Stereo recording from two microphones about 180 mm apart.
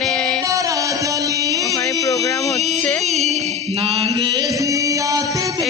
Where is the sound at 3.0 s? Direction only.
40° right (ahead or behind).